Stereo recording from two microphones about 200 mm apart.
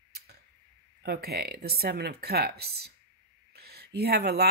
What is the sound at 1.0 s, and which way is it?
Speech, 50° right (ahead or behind).